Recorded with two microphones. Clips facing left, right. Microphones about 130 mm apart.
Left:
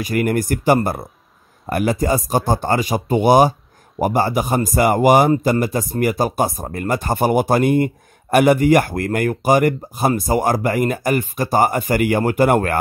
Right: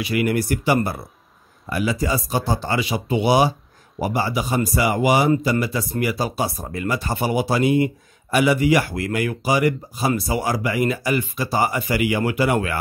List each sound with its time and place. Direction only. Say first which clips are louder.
0.0 s speech: left 2 dB; 45° left (ahead or behind)